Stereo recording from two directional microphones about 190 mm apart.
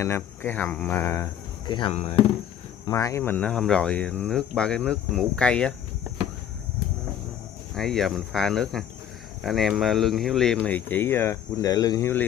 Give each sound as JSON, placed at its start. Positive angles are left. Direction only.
{"t": 0.0, "sound": "speech", "side_deg": 10}
{"t": 1.8, "sound": "speech", "side_deg": 30}
{"t": 2.9, "sound": "speech", "side_deg": 15}
{"t": 7.7, "sound": "speech", "side_deg": 0}